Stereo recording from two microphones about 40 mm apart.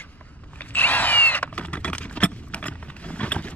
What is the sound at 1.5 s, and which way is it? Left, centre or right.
Typing, left.